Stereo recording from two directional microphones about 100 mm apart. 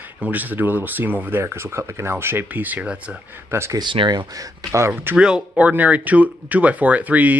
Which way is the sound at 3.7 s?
55° right (ahead or behind).